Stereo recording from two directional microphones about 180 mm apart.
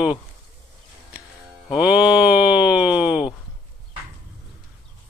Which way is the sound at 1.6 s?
5° right (ahead or behind).